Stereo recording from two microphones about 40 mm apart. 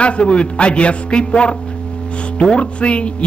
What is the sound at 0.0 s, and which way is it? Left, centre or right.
A man's voice, left.